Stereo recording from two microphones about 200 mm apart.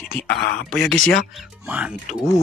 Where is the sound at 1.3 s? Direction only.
5° right (ahead or behind).